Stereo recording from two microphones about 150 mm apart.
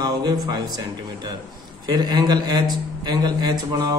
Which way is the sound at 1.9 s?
30° right (ahead or behind).